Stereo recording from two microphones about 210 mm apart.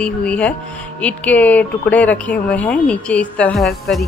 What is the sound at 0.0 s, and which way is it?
Speech, 5° left (ahead or behind).